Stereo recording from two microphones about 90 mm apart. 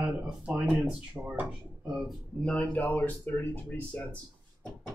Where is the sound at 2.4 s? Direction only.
15° left (ahead or behind).